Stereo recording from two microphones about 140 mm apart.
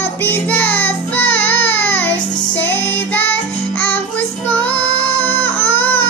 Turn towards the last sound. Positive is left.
turn(degrees=15)  # may be behind; listen again after turning